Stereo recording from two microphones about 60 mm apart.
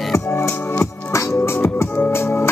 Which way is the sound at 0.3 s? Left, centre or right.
Left.